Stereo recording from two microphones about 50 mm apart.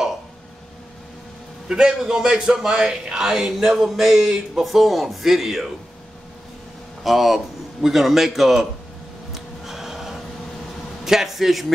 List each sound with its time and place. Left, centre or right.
1.7 s a man's voice: centre
7.0 s a man's voice: centre
9.3 s a sound: centre
11.1 s a man's voice: centre